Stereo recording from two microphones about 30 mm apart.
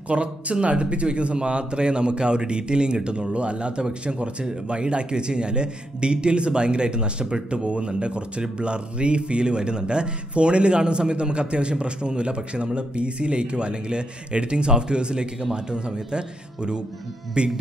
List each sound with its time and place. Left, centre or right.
0.1 s a man's voice: right